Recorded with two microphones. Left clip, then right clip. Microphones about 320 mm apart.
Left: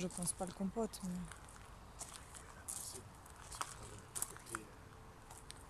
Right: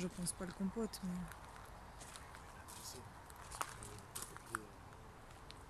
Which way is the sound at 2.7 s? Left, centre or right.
Centre.